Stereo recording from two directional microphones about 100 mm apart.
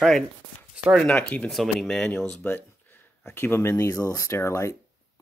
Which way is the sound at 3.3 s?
25° left (ahead or behind).